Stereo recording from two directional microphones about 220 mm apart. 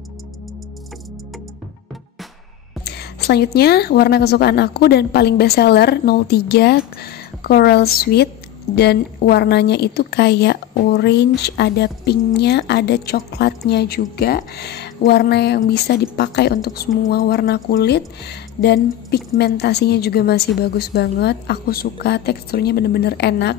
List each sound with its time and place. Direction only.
2.8 s a woman's voice: 45° left (ahead or behind)